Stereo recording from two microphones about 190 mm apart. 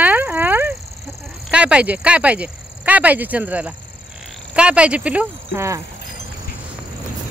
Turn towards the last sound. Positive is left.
turn(degrees=-15)  # may be behind; listen again after turning